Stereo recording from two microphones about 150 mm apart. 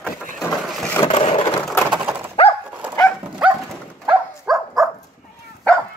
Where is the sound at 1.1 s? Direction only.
40° left (ahead or behind).